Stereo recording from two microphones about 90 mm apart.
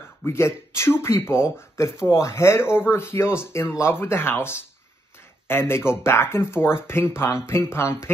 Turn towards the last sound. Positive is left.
turn(degrees=30)  # may be behind; listen again after turning